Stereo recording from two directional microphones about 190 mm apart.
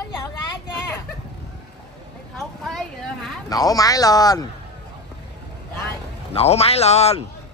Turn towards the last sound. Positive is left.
turn(degrees=35)  # may be behind; listen again after turning